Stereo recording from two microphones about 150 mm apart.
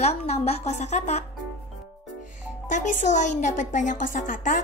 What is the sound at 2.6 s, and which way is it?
A woman's voice, 55° left (ahead or behind).